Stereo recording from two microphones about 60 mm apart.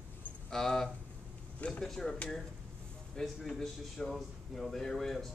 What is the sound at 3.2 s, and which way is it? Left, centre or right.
A man's voice, centre.